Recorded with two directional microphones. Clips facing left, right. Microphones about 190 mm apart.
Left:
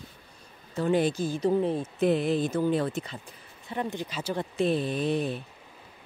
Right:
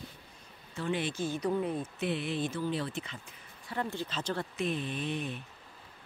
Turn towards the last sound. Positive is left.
turn(degrees=35)  # may be behind; listen again after turning